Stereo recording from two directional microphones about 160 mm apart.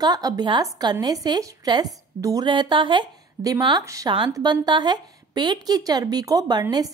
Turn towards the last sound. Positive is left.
turn(degrees=-25)  # may be behind; listen again after turning